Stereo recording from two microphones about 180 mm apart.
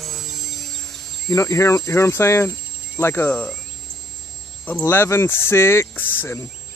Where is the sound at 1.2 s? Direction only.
15° left (ahead or behind).